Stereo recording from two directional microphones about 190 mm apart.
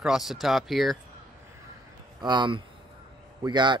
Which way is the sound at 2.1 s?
25° right (ahead or behind).